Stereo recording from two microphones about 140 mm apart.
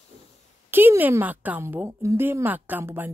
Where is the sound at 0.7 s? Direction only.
15° right (ahead or behind).